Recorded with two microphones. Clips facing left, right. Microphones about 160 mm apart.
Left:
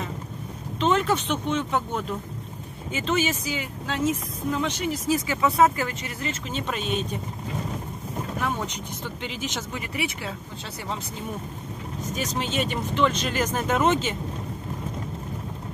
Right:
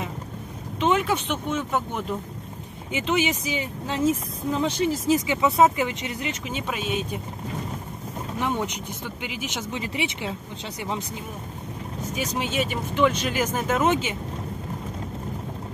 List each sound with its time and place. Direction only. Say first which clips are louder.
0.7 s speech: even; 15° right (ahead or behind)
8.4 s speech: right 4 dB; 20° right (ahead or behind)
9.8 s speech: right 4 dB; 25° right (ahead or behind)
12.1 s speech: even; 10° right (ahead or behind)